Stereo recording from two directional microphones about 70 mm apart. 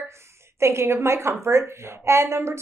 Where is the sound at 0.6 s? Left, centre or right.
Right.